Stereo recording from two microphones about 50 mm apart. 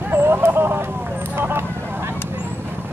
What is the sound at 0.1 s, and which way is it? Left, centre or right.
Vehicle, right.